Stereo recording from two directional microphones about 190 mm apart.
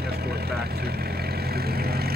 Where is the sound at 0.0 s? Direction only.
55° right (ahead or behind).